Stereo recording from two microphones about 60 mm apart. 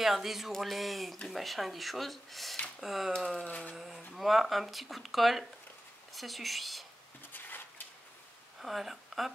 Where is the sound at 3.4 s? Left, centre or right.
Left.